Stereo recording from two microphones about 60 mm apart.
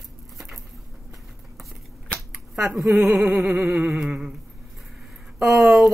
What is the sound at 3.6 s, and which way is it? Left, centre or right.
Speech, centre.